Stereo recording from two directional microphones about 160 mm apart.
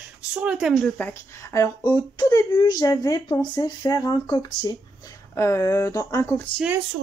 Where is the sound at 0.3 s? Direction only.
5° right (ahead or behind).